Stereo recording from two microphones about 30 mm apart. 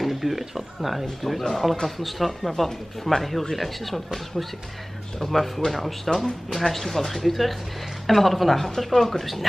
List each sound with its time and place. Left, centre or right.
0.0 s speech: centre
6.0 s speech: centre
6.6 s speech: centre